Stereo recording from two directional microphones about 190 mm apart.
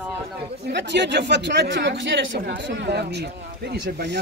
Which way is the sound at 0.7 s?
65° right (ahead or behind).